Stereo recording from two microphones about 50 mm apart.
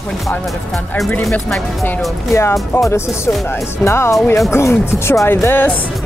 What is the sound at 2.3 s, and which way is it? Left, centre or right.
Speech, left.